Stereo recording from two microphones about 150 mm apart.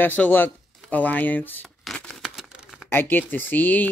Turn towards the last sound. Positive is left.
turn(degrees=10)  # may be behind; listen again after turning